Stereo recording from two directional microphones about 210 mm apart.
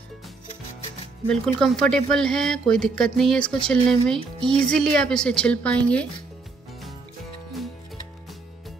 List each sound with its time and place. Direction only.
1.3 s speech: 5° left (ahead or behind)